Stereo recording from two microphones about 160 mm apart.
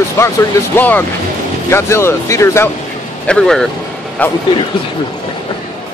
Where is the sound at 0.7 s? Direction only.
10° left (ahead or behind).